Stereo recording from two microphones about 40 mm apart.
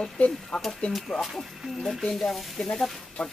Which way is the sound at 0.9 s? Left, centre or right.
Centre.